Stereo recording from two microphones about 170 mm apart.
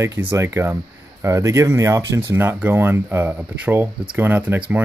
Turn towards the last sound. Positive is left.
turn(degrees=-10)  # may be behind; listen again after turning